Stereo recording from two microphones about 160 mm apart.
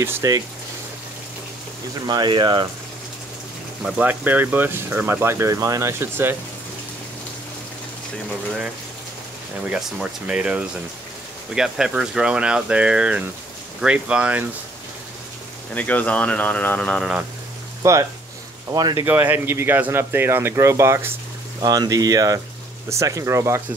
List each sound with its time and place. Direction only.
0.0 s speech: 20° right (ahead or behind)
2.0 s speech: 25° right (ahead or behind)
3.8 s speech: 10° right (ahead or behind)
9.7 s speech: centre (ahead or behind)
15.7 s speech: 10° left (ahead or behind)
17.8 s speech: 20° right (ahead or behind)